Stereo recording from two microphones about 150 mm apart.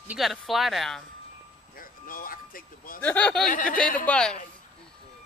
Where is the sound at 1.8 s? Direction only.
70° left (ahead or behind).